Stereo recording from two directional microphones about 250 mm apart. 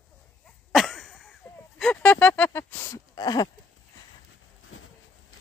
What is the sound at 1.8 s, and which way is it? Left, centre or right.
Speech, centre.